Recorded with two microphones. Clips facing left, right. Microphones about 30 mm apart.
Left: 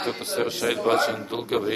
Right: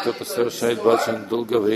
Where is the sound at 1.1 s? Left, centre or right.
Centre.